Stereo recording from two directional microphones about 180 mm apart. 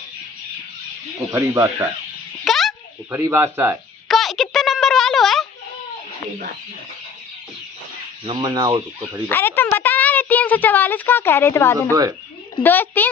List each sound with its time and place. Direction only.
1.2 s speech: 15° right (ahead or behind)
2.4 s a sound: centre (ahead or behind)
3.1 s speech: 15° right (ahead or behind)
4.1 s a sound: centre (ahead or behind)
8.3 s fowl: 25° right (ahead or behind)
9.3 s a woman's voice: 15° left (ahead or behind)